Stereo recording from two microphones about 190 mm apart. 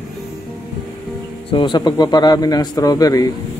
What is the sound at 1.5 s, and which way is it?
Speech, 25° left (ahead or behind).